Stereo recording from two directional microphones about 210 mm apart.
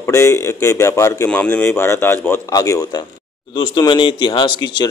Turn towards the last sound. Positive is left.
turn(degrees=20)  # may be behind; listen again after turning